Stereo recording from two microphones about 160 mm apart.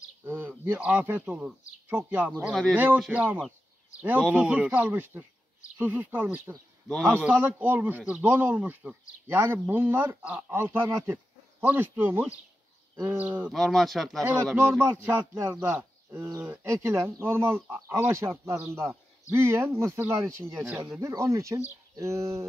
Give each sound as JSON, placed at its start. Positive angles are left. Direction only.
{"t": 0.2, "sound": "a sound", "side_deg": -15}
{"t": 0.7, "sound": "speech", "side_deg": -10}
{"t": 6.9, "sound": "speech", "side_deg": 5}
{"t": 7.2, "sound": "speech", "side_deg": -10}
{"t": 14.6, "sound": "speech", "side_deg": -15}